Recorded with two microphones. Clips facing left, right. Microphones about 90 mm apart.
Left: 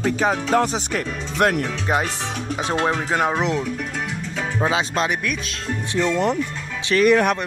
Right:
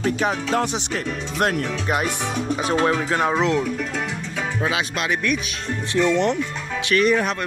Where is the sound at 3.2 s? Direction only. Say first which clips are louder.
Right 1 dB; 10° left (ahead or behind).